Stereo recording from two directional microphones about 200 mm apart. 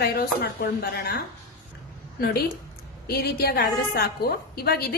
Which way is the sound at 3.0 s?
50° left (ahead or behind).